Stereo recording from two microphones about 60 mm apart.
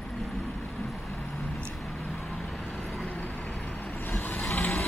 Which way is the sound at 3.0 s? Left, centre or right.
Left.